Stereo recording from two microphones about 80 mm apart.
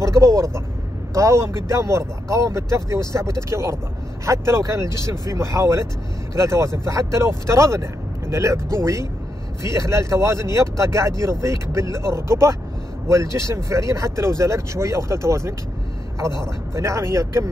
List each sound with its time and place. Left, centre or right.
0.0 s speech: right
16.7 s speech: right